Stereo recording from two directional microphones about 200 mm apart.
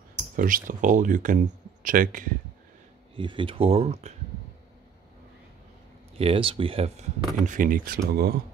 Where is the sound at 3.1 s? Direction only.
25° right (ahead or behind).